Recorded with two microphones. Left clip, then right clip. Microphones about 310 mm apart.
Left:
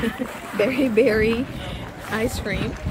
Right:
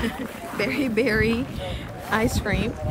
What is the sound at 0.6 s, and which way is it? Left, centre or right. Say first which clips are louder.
Speech: left 5 dB; centre.